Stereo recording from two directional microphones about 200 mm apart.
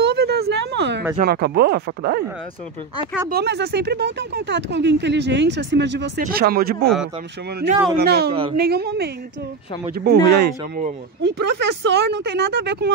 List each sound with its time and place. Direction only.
0.0 s a sound: 55° right (ahead or behind)
1.1 s speech: 50° right (ahead or behind)
3.3 s speech: 55° right (ahead or behind)
6.2 s speech: 50° right (ahead or behind)
8.0 s speech: 55° right (ahead or behind)